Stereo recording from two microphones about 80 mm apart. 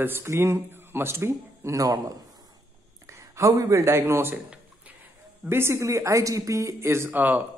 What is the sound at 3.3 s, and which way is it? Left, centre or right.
Speech, right.